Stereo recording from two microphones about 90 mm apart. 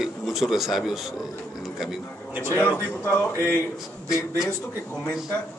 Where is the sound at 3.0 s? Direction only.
20° left (ahead or behind).